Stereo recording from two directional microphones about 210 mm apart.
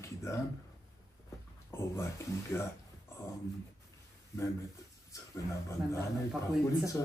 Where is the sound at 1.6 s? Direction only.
10° left (ahead or behind).